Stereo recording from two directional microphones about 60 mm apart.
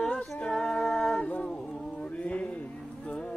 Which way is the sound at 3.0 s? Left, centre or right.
Centre.